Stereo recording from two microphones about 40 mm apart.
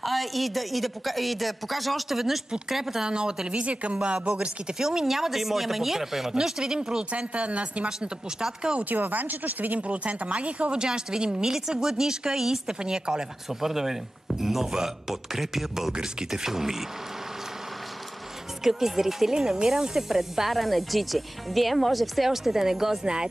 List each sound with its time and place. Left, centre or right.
0.0 s speech: centre
3.1 s speech: right
4.7 s speech: centre
7.1 s speech: right
8.8 s speech: right
9.8 s speech: right
10.7 s speech: centre
13.6 s speech: centre
18.6 s speech: centre